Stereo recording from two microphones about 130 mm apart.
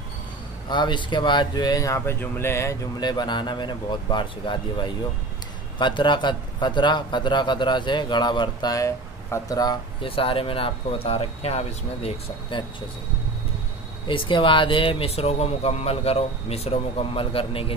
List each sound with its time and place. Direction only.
0.7 s speech: 35° left (ahead or behind)
10.0 s speech: 45° left (ahead or behind)
14.0 s speech: 40° left (ahead or behind)